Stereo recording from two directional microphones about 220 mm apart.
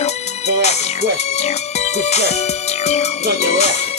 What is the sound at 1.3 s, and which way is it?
Music, 30° left (ahead or behind).